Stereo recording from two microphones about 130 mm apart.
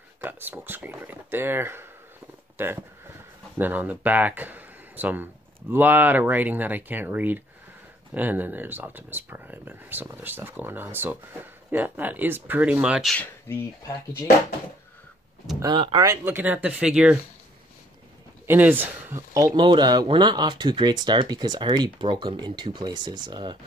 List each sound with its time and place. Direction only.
0.2 s speech: 15° right (ahead or behind)
13.1 s speech: 15° left (ahead or behind)
15.6 s speech: 35° right (ahead or behind)
16.1 s speech: 15° right (ahead or behind)
18.5 s speech: 15° right (ahead or behind); by 23.6 s 35° right (ahead or behind)